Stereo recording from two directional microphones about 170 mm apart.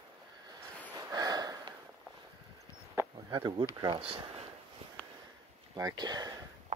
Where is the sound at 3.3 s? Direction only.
25° right (ahead or behind).